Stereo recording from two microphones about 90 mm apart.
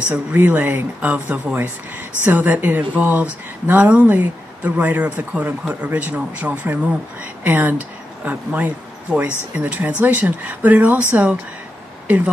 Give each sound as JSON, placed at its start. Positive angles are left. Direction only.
{"t": 0.1, "sound": "speech", "side_deg": -15}